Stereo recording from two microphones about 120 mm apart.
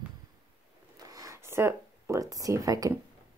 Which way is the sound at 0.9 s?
30° right (ahead or behind).